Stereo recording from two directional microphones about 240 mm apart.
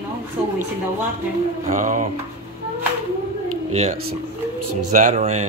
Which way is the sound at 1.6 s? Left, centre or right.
Right.